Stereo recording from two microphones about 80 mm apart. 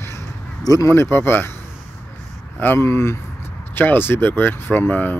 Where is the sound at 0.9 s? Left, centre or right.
Left.